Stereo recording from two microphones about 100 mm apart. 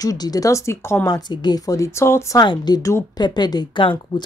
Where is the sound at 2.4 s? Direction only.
45° left (ahead or behind).